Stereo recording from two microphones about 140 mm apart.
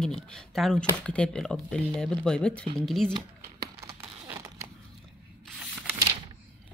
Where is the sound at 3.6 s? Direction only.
25° right (ahead or behind).